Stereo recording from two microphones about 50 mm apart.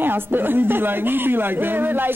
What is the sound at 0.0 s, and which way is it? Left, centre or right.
A woman's voice, right.